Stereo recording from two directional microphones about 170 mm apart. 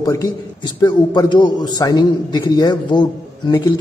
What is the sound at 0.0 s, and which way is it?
A man's voice, 20° left (ahead or behind).